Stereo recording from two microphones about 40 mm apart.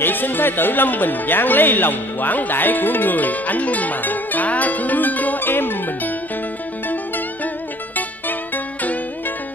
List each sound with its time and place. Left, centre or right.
0.0 s speech: left